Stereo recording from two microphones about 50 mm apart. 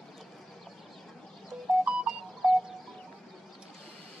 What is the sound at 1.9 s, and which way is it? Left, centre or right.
Music, centre.